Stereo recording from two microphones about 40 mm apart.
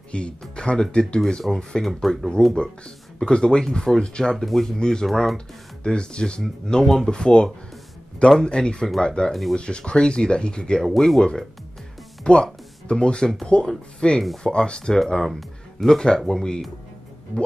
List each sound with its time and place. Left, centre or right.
0.1 s speech: left
1.5 s speech: centre
5.0 s speech: centre
5.9 s speech: left
6.4 s speech: centre
7.1 s speech: left
9.3 s speech: centre
9.6 s speech: left
10.9 s speech: centre
12.2 s music: left
12.8 s speech: left